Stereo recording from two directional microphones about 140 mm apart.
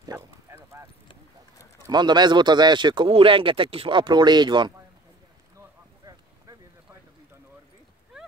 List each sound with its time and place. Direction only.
0.0 s clip-clop: 25° right (ahead or behind)
1.8 s speech: 30° right (ahead or behind)